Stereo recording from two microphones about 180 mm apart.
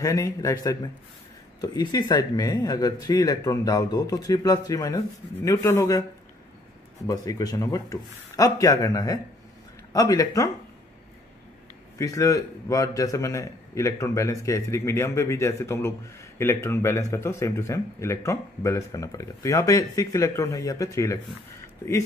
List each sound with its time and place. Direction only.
0.0 s speech: 20° left (ahead or behind)
7.1 s speech: 20° left (ahead or behind)
12.0 s speech: 20° left (ahead or behind)